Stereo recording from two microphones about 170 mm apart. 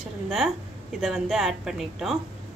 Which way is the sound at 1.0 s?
Centre (ahead or behind).